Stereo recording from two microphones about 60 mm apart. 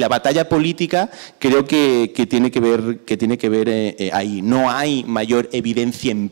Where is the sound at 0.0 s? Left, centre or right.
Centre.